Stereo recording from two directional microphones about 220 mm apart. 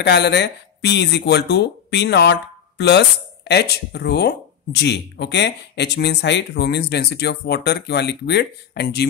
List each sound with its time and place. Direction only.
0.0 s speech: 50° left (ahead or behind)